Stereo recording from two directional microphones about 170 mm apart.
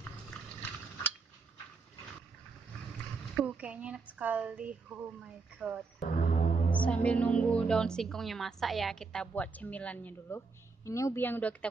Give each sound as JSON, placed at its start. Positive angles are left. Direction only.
{"t": 3.3, "sound": "speech", "side_deg": -10}
{"t": 5.9, "sound": "music", "side_deg": 45}
{"t": 6.7, "sound": "a woman's voice", "side_deg": 10}